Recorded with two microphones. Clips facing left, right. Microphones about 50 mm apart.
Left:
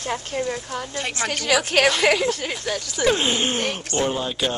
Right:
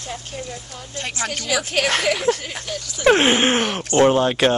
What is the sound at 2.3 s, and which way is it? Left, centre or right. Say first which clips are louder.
Speech: right 6 dB; right.